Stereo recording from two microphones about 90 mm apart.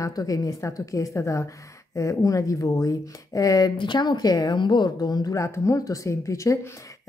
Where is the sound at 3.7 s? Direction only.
60° left (ahead or behind).